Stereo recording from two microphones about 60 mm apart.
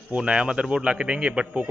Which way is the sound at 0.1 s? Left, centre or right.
Centre.